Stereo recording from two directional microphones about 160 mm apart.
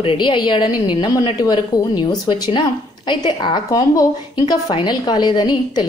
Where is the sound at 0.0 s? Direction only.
30° left (ahead or behind).